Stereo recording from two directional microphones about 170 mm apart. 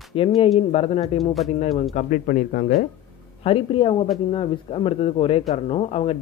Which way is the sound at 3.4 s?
30° left (ahead or behind).